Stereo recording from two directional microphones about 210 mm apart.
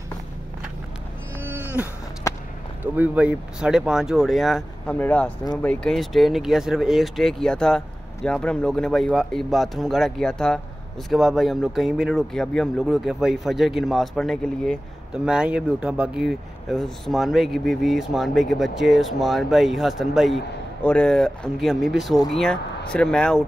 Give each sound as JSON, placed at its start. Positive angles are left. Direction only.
{"t": 1.4, "sound": "music", "side_deg": -10}
{"t": 2.8, "sound": "speech", "side_deg": -5}
{"t": 5.4, "sound": "speech", "side_deg": 20}
{"t": 5.7, "sound": "speech", "side_deg": 0}